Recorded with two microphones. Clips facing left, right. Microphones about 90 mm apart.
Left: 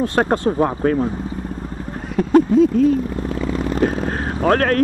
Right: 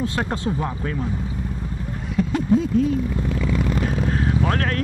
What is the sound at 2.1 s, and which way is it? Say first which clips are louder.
Speech: left 7 dB; 50° left (ahead or behind).